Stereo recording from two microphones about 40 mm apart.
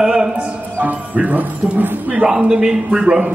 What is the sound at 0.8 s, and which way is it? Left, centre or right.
Speech, right.